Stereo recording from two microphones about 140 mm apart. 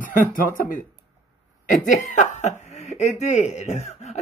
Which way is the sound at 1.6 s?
65° left (ahead or behind).